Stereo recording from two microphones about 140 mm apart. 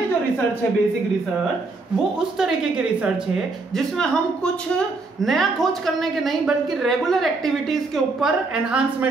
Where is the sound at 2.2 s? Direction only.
5° right (ahead or behind).